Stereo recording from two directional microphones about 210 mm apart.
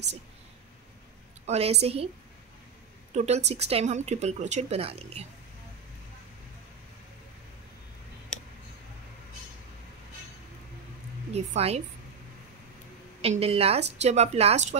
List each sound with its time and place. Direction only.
1.4 s speech: 30° right (ahead or behind)
3.2 s speech: 30° right (ahead or behind)
11.3 s a woman's voice: 30° right (ahead or behind)
13.2 s speech: 30° right (ahead or behind)